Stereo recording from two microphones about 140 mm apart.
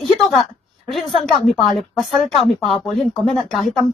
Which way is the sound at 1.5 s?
Centre (ahead or behind).